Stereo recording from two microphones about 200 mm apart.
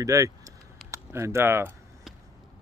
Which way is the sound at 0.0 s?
15° right (ahead or behind).